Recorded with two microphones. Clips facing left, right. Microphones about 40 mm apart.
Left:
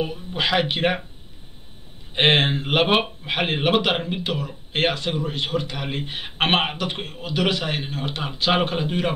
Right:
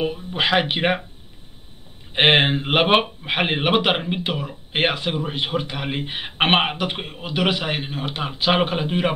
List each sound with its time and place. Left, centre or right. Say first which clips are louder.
0.0 s speech: right 2 dB; centre
2.1 s a man's voice: right 2 dB; right